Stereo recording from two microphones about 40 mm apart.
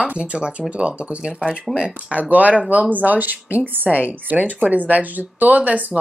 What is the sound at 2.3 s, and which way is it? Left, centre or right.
A woman's voice, right.